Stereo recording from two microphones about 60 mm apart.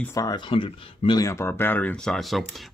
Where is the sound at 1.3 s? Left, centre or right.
Left.